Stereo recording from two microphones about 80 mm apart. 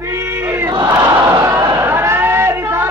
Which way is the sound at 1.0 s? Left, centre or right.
Right.